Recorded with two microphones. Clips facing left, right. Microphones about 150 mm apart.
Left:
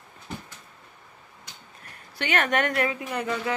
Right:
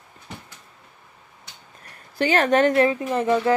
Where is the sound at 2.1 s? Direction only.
35° right (ahead or behind).